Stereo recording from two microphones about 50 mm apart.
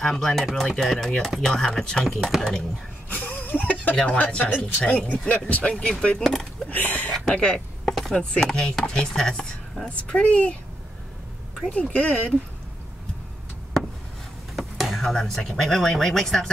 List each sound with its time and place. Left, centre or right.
0.0 s speech: centre
3.1 s a sound: left
3.9 s speech: centre
5.6 s speech: centre
6.1 s speech: centre
6.7 s speech: left
7.2 s speech: centre
7.8 s chopping: centre
8.2 s speech: centre
9.8 s speech: left
11.7 s speech: left
14.5 s a sound: centre
15.1 s speech: centre